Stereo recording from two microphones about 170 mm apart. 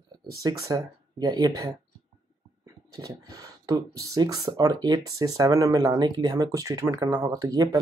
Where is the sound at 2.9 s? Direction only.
20° right (ahead or behind).